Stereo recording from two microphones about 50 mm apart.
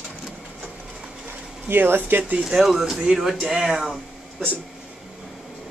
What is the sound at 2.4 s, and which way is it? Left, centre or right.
Speech, centre.